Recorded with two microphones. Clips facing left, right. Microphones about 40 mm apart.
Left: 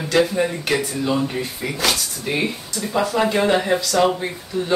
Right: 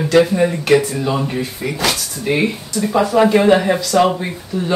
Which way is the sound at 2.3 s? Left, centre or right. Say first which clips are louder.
Right 6 dB; right.